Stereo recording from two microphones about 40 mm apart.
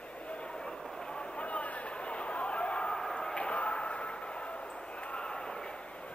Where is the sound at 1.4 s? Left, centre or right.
Left.